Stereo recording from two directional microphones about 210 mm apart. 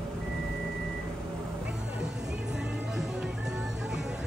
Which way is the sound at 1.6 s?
5° right (ahead or behind).